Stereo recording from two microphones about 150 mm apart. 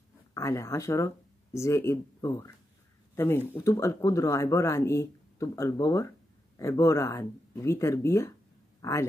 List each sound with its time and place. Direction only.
0.3 s speech: 20° left (ahead or behind)